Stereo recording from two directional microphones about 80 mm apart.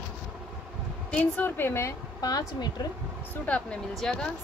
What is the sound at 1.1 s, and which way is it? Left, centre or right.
Speech, left.